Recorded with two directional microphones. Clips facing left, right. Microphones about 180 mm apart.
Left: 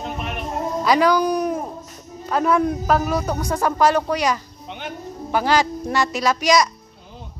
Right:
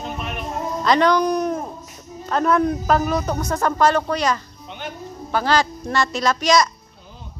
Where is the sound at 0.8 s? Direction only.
5° left (ahead or behind).